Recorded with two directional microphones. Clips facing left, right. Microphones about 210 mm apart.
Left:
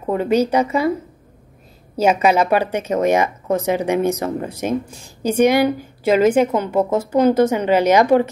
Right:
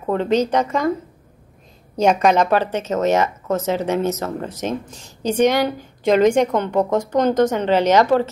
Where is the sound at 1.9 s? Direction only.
5° left (ahead or behind).